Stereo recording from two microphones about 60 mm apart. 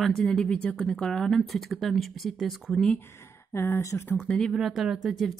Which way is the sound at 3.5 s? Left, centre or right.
Left.